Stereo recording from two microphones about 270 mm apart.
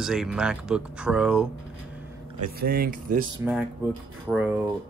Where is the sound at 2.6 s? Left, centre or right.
Right.